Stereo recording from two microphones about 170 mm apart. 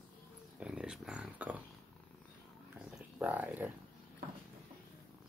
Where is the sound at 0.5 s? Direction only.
5° right (ahead or behind).